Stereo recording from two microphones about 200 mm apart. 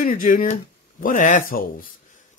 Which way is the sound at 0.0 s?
40° left (ahead or behind).